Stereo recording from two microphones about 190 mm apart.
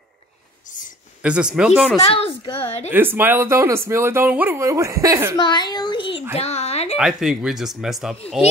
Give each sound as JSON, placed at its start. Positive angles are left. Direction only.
{"t": 0.7, "sound": "speech", "side_deg": 45}
{"t": 1.2, "sound": "speech", "side_deg": -5}
{"t": 2.0, "sound": "a child's voice", "side_deg": 30}
{"t": 2.9, "sound": "speech", "side_deg": -10}
{"t": 5.4, "sound": "a sound", "side_deg": 25}
{"t": 7.0, "sound": "speech", "side_deg": 0}